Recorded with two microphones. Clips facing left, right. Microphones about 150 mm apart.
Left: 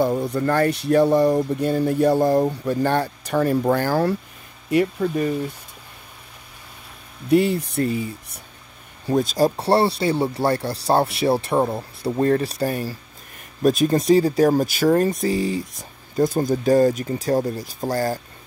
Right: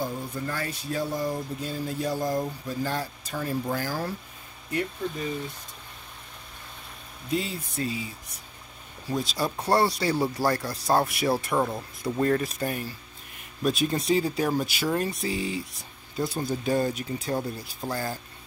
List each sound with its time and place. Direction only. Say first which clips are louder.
0.0 s speech: left 11 dB; 75° left (ahead or behind)
7.2 s speech: left 12 dB; 65° left (ahead or behind)
9.1 s speech: left 10 dB; 45° left (ahead or behind)
9.6 s speech: left 5 dB; 30° left (ahead or behind)